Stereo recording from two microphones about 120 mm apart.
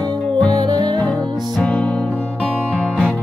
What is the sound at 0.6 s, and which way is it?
Music, 35° right (ahead or behind).